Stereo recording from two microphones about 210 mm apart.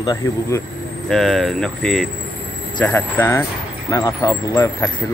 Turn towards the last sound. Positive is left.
turn(degrees=15)  # may be behind; listen again after turning